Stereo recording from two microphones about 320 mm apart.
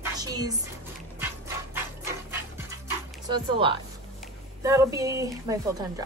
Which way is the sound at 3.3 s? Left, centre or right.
Centre.